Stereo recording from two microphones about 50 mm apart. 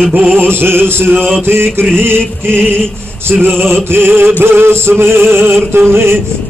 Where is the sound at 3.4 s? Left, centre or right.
Right.